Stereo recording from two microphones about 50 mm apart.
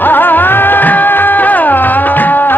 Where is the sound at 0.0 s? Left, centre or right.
Left.